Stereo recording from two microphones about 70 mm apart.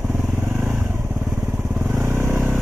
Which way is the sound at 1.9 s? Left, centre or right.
Right.